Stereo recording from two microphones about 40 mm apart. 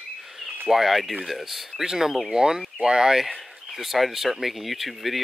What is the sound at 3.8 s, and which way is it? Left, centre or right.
Speech, centre.